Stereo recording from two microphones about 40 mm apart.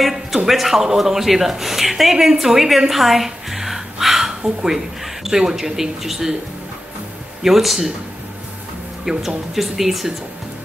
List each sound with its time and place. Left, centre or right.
0.0 s a sound: centre
0.5 s a man's voice: centre
2.9 s a sound: centre
4.6 s speech: centre
7.4 s a man's voice: centre
9.1 s speech: centre
9.6 s a man's voice: centre